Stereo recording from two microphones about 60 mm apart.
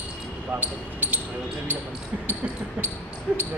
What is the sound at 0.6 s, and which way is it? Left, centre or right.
Speech, right.